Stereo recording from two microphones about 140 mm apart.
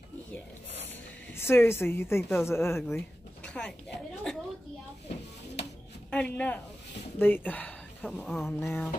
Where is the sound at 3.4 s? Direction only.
5° left (ahead or behind).